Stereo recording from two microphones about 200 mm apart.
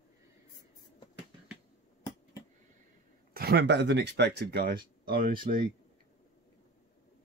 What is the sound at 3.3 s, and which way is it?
Speech, 55° right (ahead or behind).